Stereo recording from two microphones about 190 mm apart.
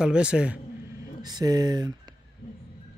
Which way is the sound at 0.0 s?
5° right (ahead or behind).